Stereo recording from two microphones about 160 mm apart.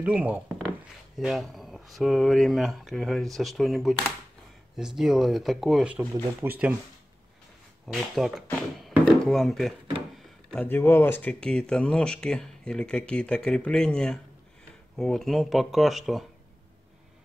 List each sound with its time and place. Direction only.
0.0 s speech: 10° right (ahead or behind)
7.8 s speech: centre (ahead or behind)
8.8 s a sound: centre (ahead or behind)
10.1 s speech: 5° left (ahead or behind)